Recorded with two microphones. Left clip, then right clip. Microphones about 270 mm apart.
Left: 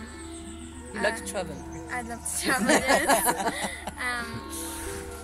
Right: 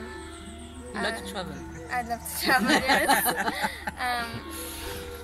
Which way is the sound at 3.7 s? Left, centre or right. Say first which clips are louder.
Right 2 dB; centre.